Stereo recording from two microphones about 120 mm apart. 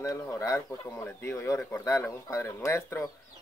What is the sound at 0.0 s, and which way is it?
Speech, 25° left (ahead or behind).